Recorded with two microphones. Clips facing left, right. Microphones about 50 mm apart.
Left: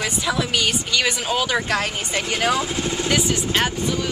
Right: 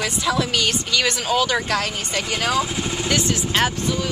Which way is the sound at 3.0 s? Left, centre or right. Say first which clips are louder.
Even; centre.